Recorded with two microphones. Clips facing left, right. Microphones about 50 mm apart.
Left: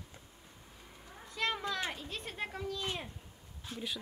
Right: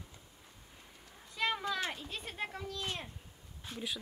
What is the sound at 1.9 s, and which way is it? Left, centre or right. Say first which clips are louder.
Speech: left 1 dB; centre.